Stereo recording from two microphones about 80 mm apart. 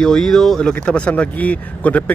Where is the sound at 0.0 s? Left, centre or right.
Centre.